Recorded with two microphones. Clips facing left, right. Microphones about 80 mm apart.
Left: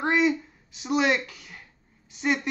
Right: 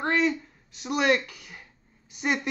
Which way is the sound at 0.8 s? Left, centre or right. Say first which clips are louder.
Even; centre.